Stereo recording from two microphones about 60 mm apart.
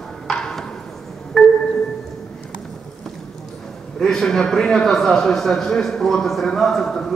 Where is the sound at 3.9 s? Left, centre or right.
Centre.